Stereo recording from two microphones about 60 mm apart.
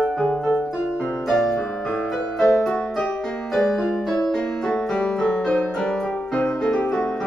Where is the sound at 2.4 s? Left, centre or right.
Centre.